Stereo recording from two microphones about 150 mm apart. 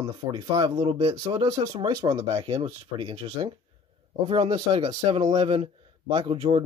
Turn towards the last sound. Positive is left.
turn(degrees=-35)  # may be behind; listen again after turning